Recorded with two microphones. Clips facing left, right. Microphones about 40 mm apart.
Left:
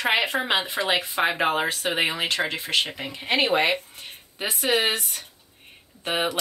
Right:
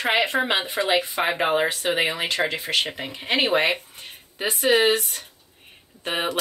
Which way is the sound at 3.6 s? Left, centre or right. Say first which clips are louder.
Even; centre.